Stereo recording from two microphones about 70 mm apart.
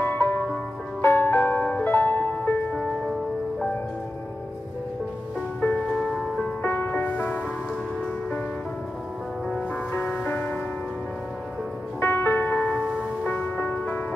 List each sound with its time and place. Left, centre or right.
0.0 s music: left
5.9 s music: centre
6.6 s music: left
9.9 s music: left
12.0 s music: left